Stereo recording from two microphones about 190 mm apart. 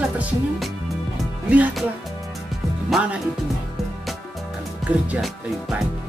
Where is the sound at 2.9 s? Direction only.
5° right (ahead or behind).